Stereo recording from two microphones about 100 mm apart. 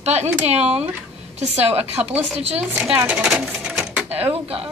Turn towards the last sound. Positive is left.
turn(degrees=-80)